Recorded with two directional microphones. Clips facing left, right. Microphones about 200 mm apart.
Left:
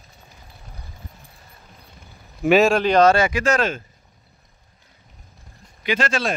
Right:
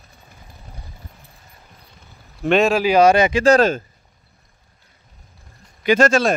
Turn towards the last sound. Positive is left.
turn(degrees=-45)  # may be behind; listen again after turning